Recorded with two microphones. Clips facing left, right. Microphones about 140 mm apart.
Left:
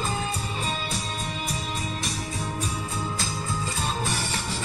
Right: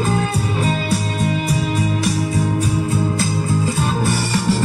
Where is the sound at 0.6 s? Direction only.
65° right (ahead or behind).